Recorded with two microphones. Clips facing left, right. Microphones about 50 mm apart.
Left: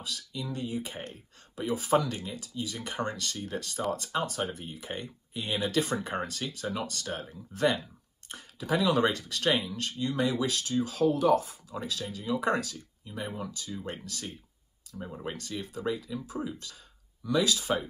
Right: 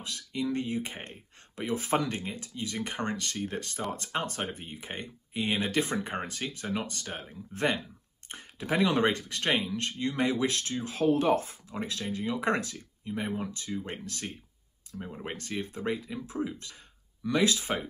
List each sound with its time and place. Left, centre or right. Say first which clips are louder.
0.0 s speech: right 5 dB; right
14.9 s speech: even; centre
15.3 s speech: right 2 dB; right